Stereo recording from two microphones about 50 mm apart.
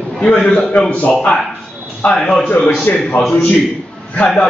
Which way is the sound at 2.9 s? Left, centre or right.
Left.